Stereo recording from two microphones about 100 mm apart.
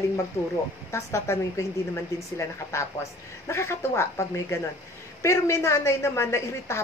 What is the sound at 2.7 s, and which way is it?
A woman's voice, 30° left (ahead or behind).